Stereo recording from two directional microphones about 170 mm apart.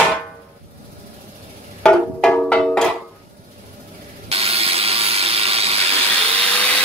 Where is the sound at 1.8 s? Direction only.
5° left (ahead or behind).